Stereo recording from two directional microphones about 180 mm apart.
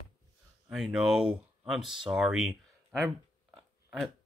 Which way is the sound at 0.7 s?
Centre (ahead or behind).